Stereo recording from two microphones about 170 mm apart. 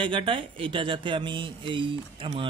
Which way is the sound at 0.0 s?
30° right (ahead or behind).